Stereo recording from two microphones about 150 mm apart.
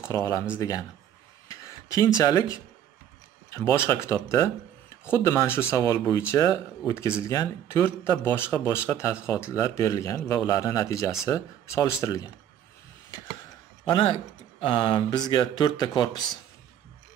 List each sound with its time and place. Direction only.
0.0 s speech: 20° left (ahead or behind)
1.5 s a sound: 20° left (ahead or behind)
2.2 s speech: 20° left (ahead or behind)
13.8 s speech: 35° left (ahead or behind)